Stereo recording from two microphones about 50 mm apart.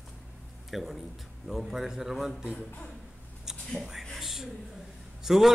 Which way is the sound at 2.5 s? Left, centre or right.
Left.